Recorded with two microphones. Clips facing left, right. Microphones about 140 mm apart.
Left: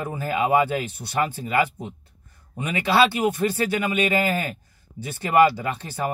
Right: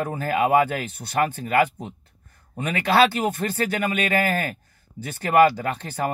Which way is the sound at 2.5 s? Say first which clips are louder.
Right 1 dB; 15° left (ahead or behind).